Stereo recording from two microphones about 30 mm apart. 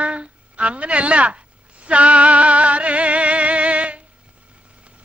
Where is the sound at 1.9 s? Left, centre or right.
Right.